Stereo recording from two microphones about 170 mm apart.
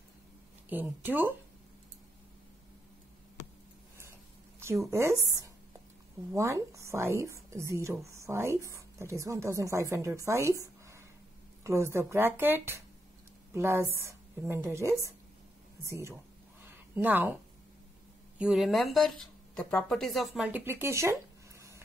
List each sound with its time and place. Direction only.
0.7 s a woman's voice: 10° right (ahead or behind)
4.9 s a woman's voice: 15° right (ahead or behind)
16.6 s a sound: 10° right (ahead or behind)
18.4 s speech: centre (ahead or behind)